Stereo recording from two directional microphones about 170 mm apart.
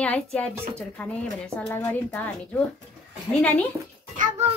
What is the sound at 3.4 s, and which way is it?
Speech, 10° left (ahead or behind).